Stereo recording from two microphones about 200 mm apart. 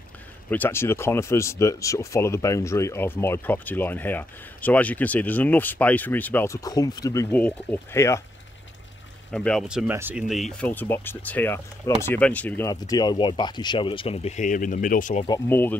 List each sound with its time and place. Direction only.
0.5 s speech: 10° left (ahead or behind)
9.3 s speech: 5° left (ahead or behind); by 15.2 s 40° left (ahead or behind)
15.2 s speech: 15° left (ahead or behind)